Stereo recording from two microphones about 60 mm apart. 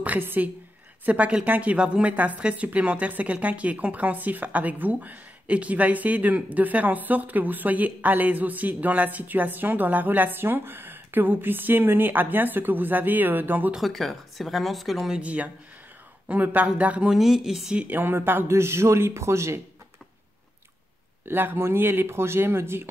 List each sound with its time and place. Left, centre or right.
0.0 s a woman's voice: right
13.7 s a woman's voice: centre
15.1 s a woman's voice: right
17.1 s speech: centre
17.7 s speech: right
18.5 s speech: right
21.3 s speech: right